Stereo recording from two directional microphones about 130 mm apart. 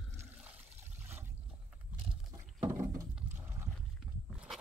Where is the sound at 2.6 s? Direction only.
20° right (ahead or behind).